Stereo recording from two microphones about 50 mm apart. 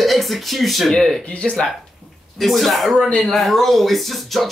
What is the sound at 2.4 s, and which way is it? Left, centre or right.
Speech, centre.